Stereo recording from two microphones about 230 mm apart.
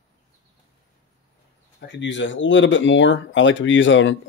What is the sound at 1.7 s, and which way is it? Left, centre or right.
Speech, left.